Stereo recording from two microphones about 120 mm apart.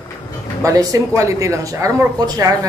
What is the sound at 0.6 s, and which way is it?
Speech, 30° right (ahead or behind).